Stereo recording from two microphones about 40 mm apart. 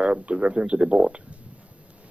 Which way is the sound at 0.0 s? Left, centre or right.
Right.